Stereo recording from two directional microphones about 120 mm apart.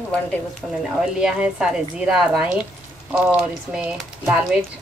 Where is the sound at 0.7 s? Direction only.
Centre (ahead or behind).